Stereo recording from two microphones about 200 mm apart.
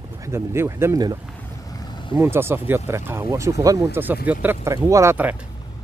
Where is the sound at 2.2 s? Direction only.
10° right (ahead or behind).